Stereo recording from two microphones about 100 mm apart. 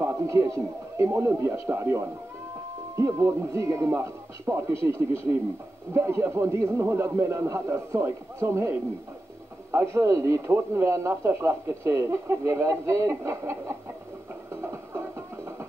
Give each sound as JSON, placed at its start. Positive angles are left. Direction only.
{"t": 0.0, "sound": "speech", "side_deg": -30}
{"t": 14.5, "sound": "music", "side_deg": -25}